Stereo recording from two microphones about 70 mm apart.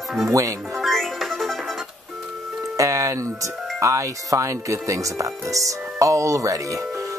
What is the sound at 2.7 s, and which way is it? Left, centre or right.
Speech, right.